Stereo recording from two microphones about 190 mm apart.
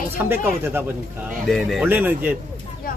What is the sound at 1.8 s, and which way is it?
Speech, 10° right (ahead or behind).